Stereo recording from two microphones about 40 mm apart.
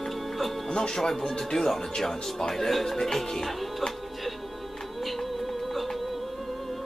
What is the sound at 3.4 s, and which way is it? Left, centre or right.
Music, centre.